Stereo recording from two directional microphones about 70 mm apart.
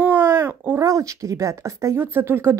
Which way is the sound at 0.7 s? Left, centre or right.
Right.